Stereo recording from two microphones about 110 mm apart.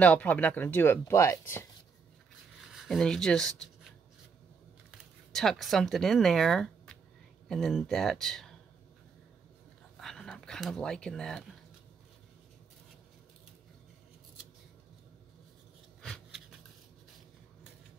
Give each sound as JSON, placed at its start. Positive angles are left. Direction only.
{"t": 0.0, "sound": "speech", "side_deg": 15}
{"t": 2.6, "sound": "speech", "side_deg": -5}
{"t": 5.3, "sound": "speech", "side_deg": 0}
{"t": 9.9, "sound": "speech", "side_deg": 5}
{"t": 16.0, "sound": "a sound", "side_deg": 5}